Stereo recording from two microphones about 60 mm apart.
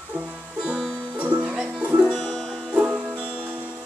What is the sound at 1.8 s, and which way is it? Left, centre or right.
Music, right.